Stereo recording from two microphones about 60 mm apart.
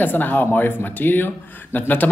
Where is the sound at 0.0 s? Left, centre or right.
Left.